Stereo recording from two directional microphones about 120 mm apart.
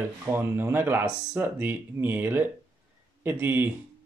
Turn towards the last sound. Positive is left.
turn(degrees=-15)  # may be behind; listen again after turning